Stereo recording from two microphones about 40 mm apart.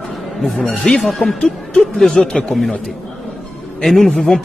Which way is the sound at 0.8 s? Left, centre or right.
Centre.